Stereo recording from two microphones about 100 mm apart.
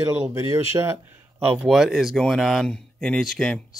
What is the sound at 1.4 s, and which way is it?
Speech, 15° right (ahead or behind).